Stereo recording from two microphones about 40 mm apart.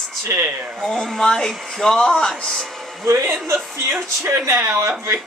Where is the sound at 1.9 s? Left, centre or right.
Centre.